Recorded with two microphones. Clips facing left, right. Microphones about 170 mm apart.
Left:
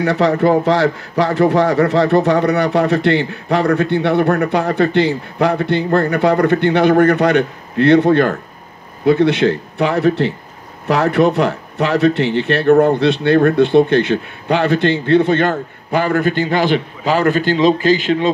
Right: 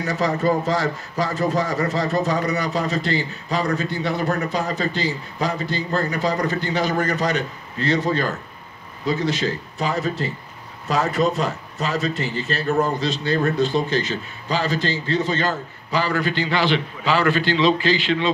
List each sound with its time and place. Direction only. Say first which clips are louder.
0.0 s a man's voice: left 7 dB; 65° left (ahead or behind); by 18.3 s 45° left (ahead or behind)